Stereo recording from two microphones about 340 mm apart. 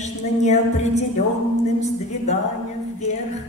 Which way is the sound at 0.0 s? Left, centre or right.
Centre.